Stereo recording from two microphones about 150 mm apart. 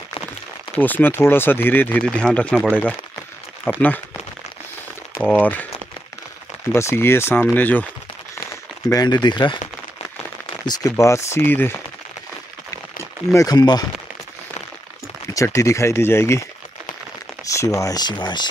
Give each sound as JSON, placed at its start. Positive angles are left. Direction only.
{"t": 0.7, "sound": "speech", "side_deg": 10}
{"t": 5.2, "sound": "speech", "side_deg": 10}
{"t": 6.7, "sound": "speech", "side_deg": 15}
{"t": 8.8, "sound": "speech", "side_deg": 25}
{"t": 10.6, "sound": "speech", "side_deg": 25}
{"t": 13.3, "sound": "speech", "side_deg": 25}
{"t": 15.3, "sound": "speech", "side_deg": 20}
{"t": 17.5, "sound": "speech", "side_deg": 20}